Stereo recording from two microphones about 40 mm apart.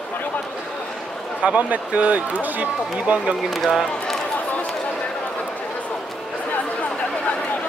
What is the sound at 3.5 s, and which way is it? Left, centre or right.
Speech, centre.